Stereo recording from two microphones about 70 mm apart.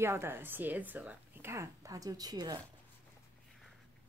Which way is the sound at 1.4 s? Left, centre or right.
Right.